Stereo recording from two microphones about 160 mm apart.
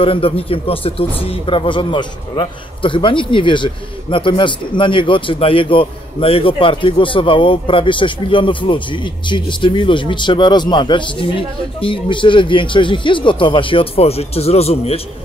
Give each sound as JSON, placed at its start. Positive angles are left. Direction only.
{"t": 0.0, "sound": "speech", "side_deg": 35}